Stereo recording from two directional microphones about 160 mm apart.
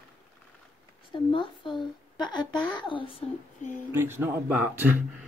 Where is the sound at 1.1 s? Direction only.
30° left (ahead or behind).